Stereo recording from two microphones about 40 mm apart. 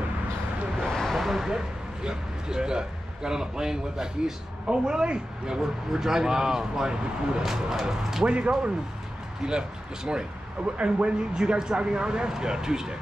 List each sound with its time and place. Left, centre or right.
0.8 s a sound: centre
2.0 s speech: centre
5.6 s speech: centre
8.3 s speech: right